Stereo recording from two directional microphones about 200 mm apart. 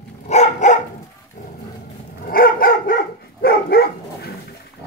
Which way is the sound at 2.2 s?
45° left (ahead or behind).